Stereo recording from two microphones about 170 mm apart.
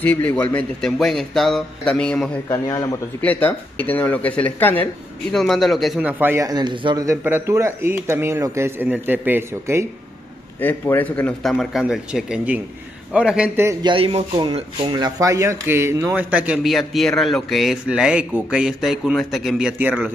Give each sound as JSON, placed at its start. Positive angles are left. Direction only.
{"t": 0.0, "sound": "speech", "side_deg": 10}
{"t": 2.5, "sound": "speech", "side_deg": 20}
{"t": 7.1, "sound": "speech", "side_deg": -15}
{"t": 10.6, "sound": "speech", "side_deg": 10}
{"t": 13.7, "sound": "speech", "side_deg": -30}